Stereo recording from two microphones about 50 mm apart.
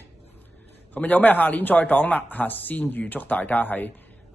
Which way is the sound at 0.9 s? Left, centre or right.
Left.